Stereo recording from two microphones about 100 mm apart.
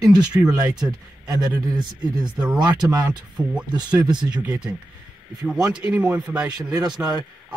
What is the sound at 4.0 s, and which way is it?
Speech, 45° right (ahead or behind).